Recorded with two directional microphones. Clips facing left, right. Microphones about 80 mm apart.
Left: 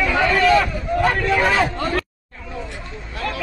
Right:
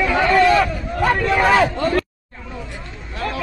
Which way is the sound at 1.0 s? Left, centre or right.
Centre.